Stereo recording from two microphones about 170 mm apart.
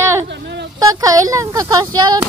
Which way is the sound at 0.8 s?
20° right (ahead or behind).